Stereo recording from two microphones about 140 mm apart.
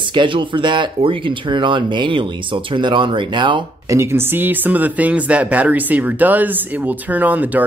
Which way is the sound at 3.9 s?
20° right (ahead or behind).